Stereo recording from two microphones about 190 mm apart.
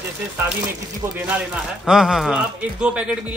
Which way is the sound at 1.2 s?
5° right (ahead or behind).